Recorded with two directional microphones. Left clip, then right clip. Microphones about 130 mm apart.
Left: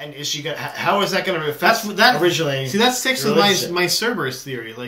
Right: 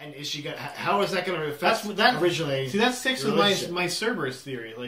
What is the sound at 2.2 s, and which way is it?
Speech, 15° left (ahead or behind).